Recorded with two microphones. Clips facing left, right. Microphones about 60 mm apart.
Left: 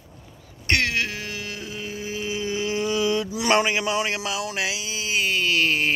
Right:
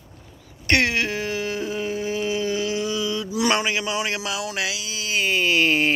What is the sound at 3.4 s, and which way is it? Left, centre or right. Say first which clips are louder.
Speech: left 2 dB; left.